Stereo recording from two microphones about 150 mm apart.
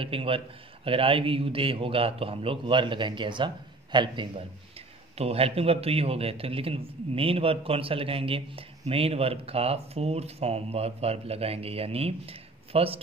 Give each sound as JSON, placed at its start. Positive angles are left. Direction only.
{"t": 0.0, "sound": "a man's voice", "side_deg": -35}